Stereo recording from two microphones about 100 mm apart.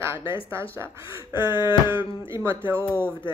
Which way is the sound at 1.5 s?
50° left (ahead or behind).